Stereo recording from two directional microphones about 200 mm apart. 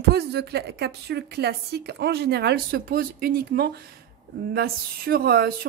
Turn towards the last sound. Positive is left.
turn(degrees=-50)  # may be behind; listen again after turning